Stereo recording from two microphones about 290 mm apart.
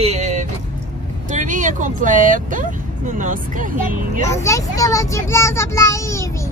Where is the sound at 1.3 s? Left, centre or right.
Right.